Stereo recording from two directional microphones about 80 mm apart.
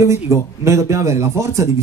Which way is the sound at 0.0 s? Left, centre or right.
Right.